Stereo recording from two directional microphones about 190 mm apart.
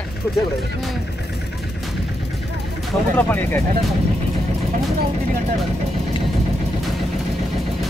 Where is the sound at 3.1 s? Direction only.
10° left (ahead or behind).